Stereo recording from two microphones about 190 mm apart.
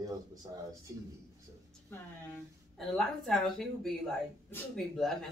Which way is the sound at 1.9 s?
5° left (ahead or behind).